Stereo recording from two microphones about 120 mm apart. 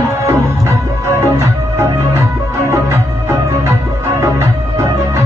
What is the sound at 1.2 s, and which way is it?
Music, 25° right (ahead or behind).